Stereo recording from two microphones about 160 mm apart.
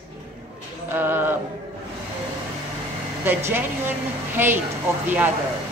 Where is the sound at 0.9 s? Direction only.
15° right (ahead or behind).